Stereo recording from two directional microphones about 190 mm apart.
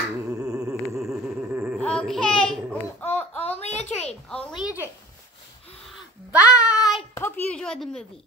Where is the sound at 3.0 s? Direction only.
10° left (ahead or behind).